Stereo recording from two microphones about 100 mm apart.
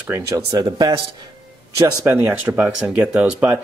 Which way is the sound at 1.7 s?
20° right (ahead or behind).